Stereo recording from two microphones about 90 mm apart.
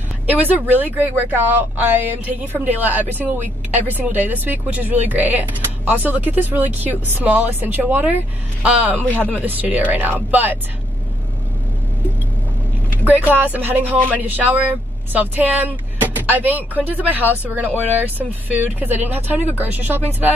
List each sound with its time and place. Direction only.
0.3 s a man's voice: 20° right (ahead or behind)
9.0 s speech: 15° left (ahead or behind)
9.3 s speech: 20° right (ahead or behind)
13.3 s speech: 20° right (ahead or behind)